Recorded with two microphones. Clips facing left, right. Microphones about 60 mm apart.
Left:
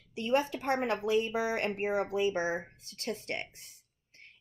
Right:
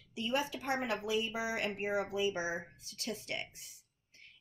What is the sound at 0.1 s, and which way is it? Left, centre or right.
A woman's voice, left.